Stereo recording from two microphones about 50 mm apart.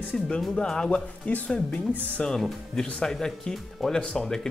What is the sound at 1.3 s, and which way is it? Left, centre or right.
Speech, left.